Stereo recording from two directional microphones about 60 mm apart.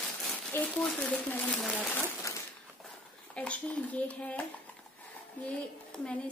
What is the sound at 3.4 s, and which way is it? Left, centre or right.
A woman's voice, left.